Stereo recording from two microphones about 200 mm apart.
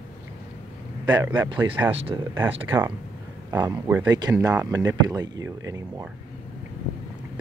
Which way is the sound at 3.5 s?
20° right (ahead or behind).